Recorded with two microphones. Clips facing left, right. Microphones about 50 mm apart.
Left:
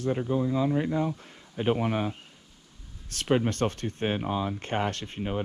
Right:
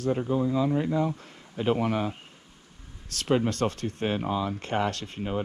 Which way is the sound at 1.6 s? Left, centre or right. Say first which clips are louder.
Right 1 dB; left.